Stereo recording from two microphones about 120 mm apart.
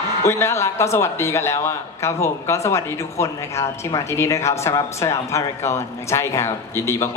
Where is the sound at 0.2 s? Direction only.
20° left (ahead or behind).